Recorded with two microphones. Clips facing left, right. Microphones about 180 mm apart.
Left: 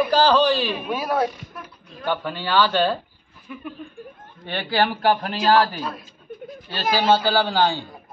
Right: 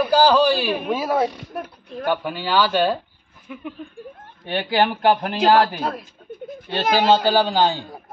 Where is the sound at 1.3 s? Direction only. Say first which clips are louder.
Right 7 dB; 65° right (ahead or behind).